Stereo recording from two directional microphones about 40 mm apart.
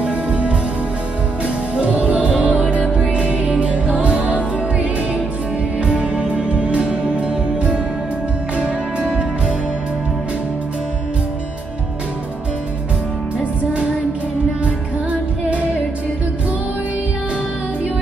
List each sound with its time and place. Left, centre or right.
0.0 s music: right
13.4 s music: right